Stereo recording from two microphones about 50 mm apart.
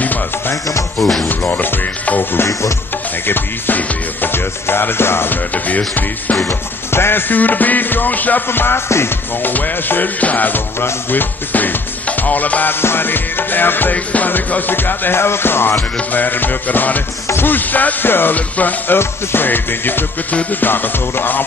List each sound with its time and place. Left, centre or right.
1.5 s music: left
5.5 s music: left
8.5 s music: left
9.4 s music: left
12.8 s music: left
18.3 s music: left
18.9 s music: left